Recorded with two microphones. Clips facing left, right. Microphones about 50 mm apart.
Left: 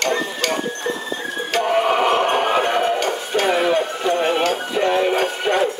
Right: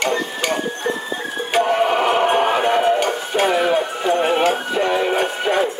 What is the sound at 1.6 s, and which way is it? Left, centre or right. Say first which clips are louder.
Music: even; centre.